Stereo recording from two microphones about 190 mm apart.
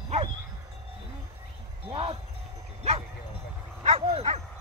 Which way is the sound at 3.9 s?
35° right (ahead or behind).